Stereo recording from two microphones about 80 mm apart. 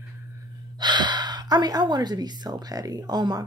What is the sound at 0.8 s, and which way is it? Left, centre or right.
A woman's voice, right.